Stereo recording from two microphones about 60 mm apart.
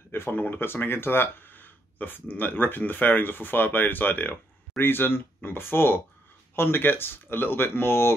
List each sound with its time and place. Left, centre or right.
0.1 s speech: left